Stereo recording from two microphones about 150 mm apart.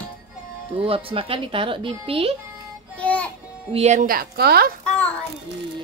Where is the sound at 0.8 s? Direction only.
40° right (ahead or behind).